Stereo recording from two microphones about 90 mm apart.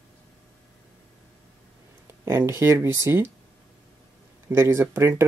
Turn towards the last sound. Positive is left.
turn(degrees=-25)  # may be behind; listen again after turning